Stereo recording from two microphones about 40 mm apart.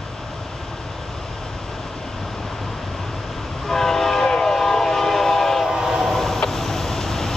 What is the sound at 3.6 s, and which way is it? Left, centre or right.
Train, centre.